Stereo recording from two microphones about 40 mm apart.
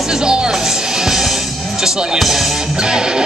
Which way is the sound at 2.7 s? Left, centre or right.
Centre.